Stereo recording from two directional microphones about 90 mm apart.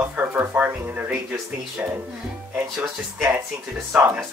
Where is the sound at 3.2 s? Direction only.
30° right (ahead or behind).